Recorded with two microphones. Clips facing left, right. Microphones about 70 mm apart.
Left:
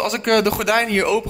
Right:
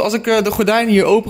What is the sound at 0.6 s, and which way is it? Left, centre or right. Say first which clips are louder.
Speech: right 5 dB; centre.